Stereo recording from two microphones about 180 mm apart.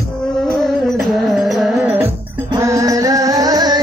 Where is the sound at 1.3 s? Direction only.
Centre (ahead or behind).